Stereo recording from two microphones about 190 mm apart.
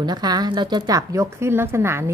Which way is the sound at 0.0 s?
20° right (ahead or behind).